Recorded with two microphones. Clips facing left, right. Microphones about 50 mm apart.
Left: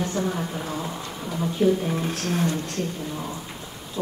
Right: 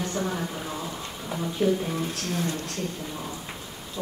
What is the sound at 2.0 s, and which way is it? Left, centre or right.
Speech, left.